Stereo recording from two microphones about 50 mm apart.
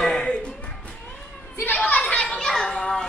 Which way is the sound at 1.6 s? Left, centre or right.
Left.